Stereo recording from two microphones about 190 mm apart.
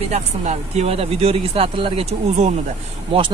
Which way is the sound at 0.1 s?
35° right (ahead or behind).